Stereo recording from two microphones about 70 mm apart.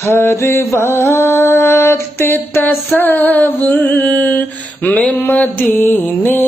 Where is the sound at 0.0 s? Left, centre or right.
Left.